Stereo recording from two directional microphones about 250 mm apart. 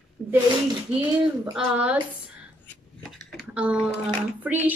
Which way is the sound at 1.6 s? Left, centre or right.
Centre.